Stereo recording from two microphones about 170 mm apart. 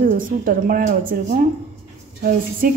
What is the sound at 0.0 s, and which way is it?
A woman's voice, 55° right (ahead or behind).